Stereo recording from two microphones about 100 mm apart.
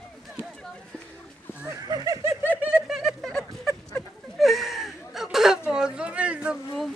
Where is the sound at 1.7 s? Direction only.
40° right (ahead or behind).